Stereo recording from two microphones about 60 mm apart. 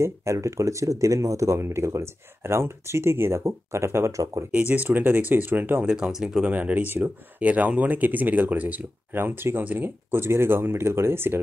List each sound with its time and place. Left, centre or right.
0.0 s speech: right
4.5 s speech: right
5.9 s speech: centre
6.4 s speech: right